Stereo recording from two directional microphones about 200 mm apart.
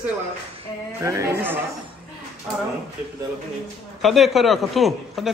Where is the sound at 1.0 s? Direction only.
15° right (ahead or behind).